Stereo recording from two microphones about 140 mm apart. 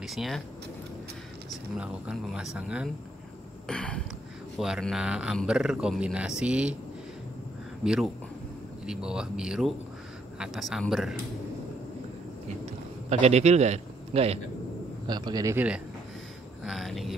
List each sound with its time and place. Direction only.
0.0 s speech: centre (ahead or behind)
1.8 s speech: 5° right (ahead or behind)
3.6 s a sound: 5° left (ahead or behind)
4.6 s speech: centre (ahead or behind)
7.8 s speech: 5° right (ahead or behind)
13.1 s a man's voice: 50° right (ahead or behind)
15.0 s a man's voice: 30° right (ahead or behind)
15.5 s speech: 10° right (ahead or behind)